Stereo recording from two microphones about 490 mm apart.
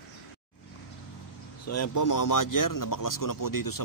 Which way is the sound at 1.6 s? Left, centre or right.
Left.